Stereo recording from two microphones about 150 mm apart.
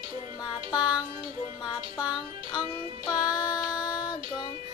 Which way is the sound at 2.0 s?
30° left (ahead or behind).